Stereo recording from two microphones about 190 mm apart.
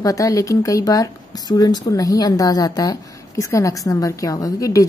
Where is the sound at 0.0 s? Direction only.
20° left (ahead or behind).